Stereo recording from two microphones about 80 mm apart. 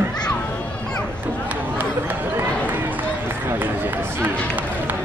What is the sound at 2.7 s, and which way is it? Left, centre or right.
Run, right.